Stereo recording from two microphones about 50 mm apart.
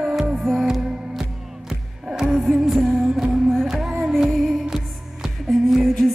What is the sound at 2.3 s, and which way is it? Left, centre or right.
Music, centre.